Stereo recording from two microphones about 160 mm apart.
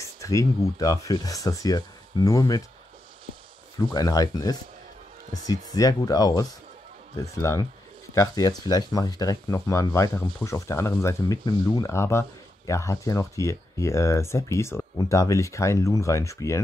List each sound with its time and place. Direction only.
0.0 s speech: 20° left (ahead or behind)
3.7 s speech: 25° left (ahead or behind)